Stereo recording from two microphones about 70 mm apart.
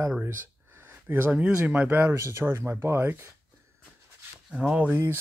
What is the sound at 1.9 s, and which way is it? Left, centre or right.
Speech, right.